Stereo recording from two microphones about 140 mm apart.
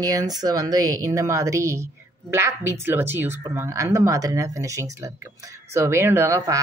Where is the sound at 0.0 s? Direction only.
25° right (ahead or behind).